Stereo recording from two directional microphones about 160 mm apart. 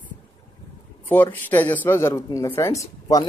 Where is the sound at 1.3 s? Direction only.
10° left (ahead or behind).